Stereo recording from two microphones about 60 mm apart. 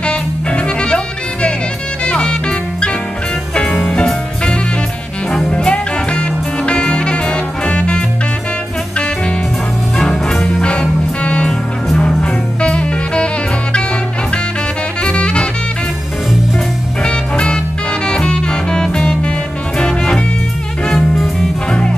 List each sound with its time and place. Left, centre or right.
0.0 s music: centre
3.8 s music: centre
9.9 s music: centre
15.0 s music: centre
17.0 s music: centre
20.8 s music: centre
21.6 s music: centre